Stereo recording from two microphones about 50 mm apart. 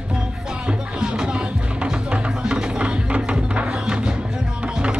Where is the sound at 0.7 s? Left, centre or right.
Centre.